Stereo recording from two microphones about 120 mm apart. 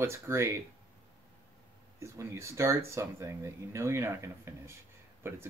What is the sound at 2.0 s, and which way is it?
Speech, 25° right (ahead or behind).